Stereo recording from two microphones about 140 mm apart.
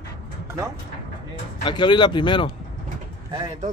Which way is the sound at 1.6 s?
35° left (ahead or behind).